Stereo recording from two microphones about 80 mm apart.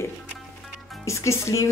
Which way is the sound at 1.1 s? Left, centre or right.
Left.